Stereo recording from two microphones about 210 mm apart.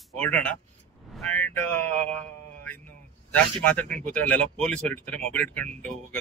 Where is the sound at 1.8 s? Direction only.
35° right (ahead or behind).